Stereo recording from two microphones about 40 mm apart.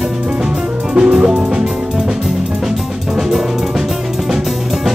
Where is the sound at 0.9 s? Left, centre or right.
Right.